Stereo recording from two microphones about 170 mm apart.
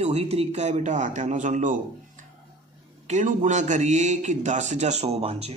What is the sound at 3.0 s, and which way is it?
A man's voice, 45° right (ahead or behind).